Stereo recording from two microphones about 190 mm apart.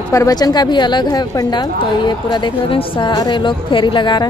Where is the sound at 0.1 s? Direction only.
20° left (ahead or behind).